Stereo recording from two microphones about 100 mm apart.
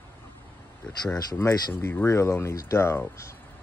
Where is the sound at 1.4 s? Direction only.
25° left (ahead or behind).